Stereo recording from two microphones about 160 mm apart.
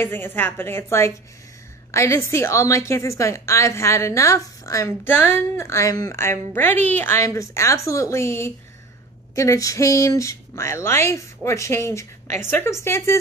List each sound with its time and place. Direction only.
0.0 s a woman's voice: 15° left (ahead or behind)